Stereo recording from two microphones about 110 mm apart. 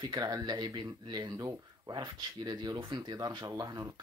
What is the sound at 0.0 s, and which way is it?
Speech, 35° right (ahead or behind).